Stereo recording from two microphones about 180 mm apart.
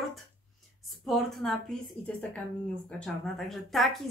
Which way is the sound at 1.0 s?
Centre (ahead or behind).